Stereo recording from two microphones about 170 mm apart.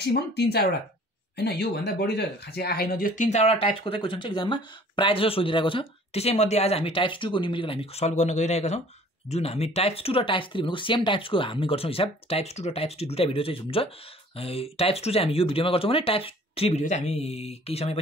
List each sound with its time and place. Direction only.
0.0 s speech: 70° left (ahead or behind); by 17.9 s 35° left (ahead or behind)